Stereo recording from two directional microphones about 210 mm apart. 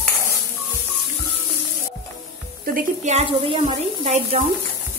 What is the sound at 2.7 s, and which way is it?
Speech, 30° right (ahead or behind).